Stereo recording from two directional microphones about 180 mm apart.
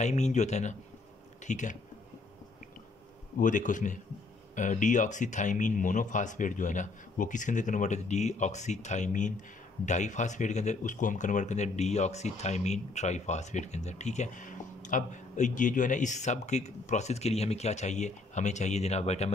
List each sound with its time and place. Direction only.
0.0 s speech: 40° left (ahead or behind)
3.3 s speech: 45° left (ahead or behind)